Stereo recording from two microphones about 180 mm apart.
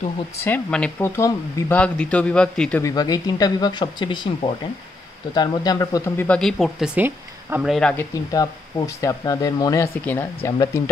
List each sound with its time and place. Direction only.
0.4 s speech: 10° left (ahead or behind)
2.8 s speech: 20° left (ahead or behind); by 6.9 s centre (ahead or behind)
7.0 s speech: 10° right (ahead or behind)
7.6 s speech: centre (ahead or behind)
7.9 s speech: 15° left (ahead or behind)